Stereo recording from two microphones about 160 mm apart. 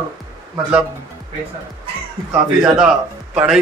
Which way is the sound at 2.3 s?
5° right (ahead or behind).